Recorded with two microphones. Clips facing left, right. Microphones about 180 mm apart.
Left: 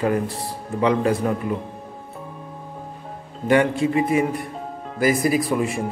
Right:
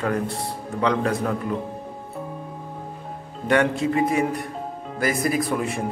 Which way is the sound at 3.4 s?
Centre (ahead or behind).